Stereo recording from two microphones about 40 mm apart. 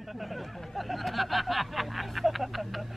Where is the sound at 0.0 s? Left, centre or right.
Centre.